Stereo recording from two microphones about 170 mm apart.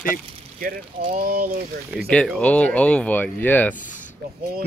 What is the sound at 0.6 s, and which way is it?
Speech, 55° right (ahead or behind).